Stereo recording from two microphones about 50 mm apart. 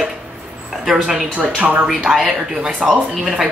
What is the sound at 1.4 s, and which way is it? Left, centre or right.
Speech, right.